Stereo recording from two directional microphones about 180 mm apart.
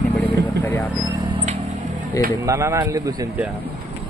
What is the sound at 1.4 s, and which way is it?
Music, 40° right (ahead or behind).